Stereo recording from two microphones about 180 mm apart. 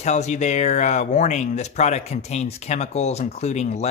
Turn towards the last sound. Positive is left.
turn(degrees=40)  # may be behind; listen again after turning